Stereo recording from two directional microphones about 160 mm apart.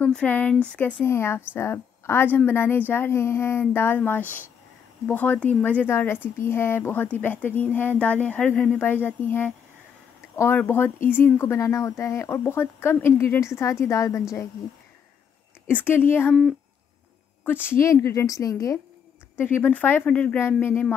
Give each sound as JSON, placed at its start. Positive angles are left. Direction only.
{"t": 0.0, "sound": "speech", "side_deg": 10}
{"t": 15.7, "sound": "speech", "side_deg": 15}
{"t": 17.5, "sound": "speech", "side_deg": 15}